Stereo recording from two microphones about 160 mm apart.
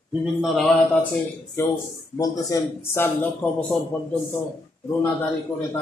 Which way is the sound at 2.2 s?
20° left (ahead or behind).